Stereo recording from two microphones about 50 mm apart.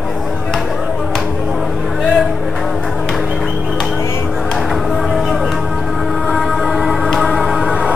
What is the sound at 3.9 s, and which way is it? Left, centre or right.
Music, left.